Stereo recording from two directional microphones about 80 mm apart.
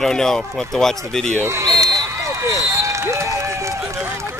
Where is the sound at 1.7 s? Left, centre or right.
Right.